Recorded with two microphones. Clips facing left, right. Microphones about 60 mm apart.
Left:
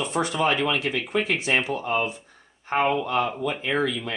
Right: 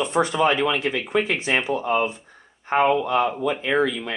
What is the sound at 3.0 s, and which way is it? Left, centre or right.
Speech, right.